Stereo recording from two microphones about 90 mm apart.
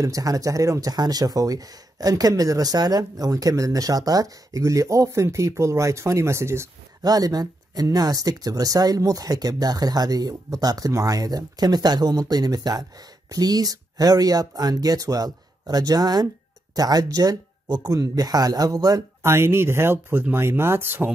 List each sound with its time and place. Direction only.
0.0 s speech: 40° right (ahead or behind)
7.0 s speech: 45° right (ahead or behind)
19.2 s speech: 30° right (ahead or behind)